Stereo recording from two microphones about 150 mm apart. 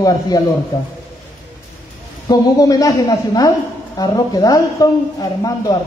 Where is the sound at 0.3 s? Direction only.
25° left (ahead or behind).